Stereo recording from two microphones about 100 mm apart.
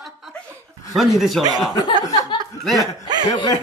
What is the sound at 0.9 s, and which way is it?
Speech, centre (ahead or behind).